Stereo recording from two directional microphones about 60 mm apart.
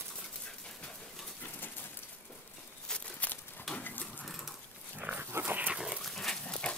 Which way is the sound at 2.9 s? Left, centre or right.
Left.